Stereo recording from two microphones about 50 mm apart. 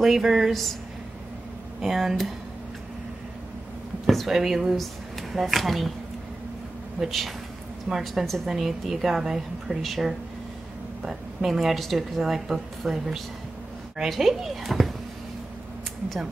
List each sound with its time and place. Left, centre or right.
0.0 s speech: centre
1.8 s speech: centre
4.0 s speech: centre
7.0 s speech: centre